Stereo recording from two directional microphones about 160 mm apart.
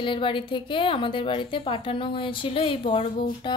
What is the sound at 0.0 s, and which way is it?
A woman's voice, 30° left (ahead or behind).